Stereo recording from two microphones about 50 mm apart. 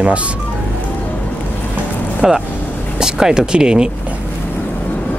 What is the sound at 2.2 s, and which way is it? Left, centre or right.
Speech, centre.